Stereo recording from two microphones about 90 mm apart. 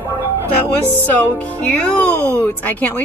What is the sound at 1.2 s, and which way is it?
Speech, 20° left (ahead or behind).